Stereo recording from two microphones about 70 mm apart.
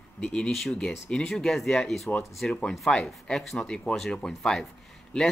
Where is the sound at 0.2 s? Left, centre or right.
Centre.